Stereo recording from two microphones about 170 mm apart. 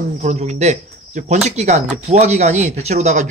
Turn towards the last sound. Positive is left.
turn(degrees=-45)  # may be behind; listen again after turning